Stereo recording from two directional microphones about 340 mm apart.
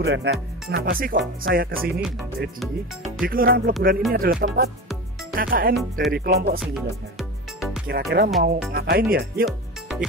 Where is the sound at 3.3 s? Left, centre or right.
Right.